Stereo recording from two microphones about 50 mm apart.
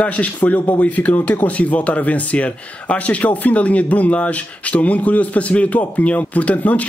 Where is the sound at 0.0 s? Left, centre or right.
Left.